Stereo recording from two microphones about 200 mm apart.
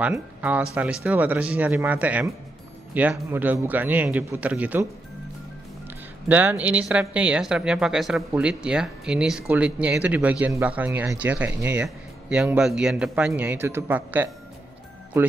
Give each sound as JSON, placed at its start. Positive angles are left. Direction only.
{"t": 0.0, "sound": "speech", "side_deg": -10}
{"t": 6.2, "sound": "speech", "side_deg": -10}